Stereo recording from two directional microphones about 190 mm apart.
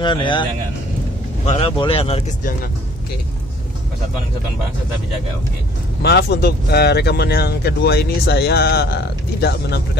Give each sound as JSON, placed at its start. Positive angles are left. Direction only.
{"t": 0.0, "sound": "a man's voice", "side_deg": 25}
{"t": 6.0, "sound": "speech", "side_deg": 60}